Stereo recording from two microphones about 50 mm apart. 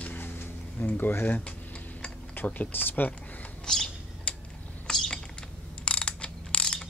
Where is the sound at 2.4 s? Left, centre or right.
Left.